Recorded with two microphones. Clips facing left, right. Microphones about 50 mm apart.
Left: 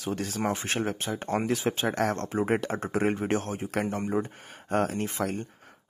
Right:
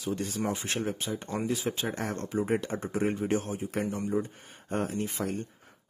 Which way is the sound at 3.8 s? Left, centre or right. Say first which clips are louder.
Left 2 dB; left.